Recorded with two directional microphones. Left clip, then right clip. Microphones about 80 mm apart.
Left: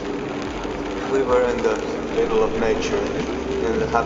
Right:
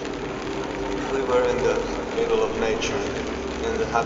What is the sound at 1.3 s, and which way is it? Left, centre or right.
Speech, centre.